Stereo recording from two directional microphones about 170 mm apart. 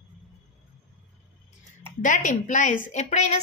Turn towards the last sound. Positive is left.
turn(degrees=40)  # may be behind; listen again after turning